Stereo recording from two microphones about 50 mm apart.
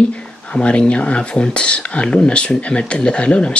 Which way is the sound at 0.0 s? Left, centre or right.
Left.